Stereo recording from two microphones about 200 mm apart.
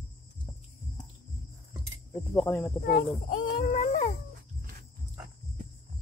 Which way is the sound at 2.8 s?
45° left (ahead or behind).